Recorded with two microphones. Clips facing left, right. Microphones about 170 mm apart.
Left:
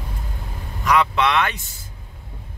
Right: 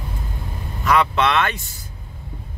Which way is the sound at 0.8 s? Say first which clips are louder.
Right 1 dB; 15° left (ahead or behind).